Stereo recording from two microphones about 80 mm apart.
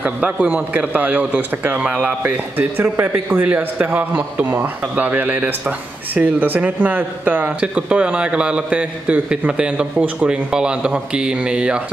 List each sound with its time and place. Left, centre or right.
0.0 s a man's voice: centre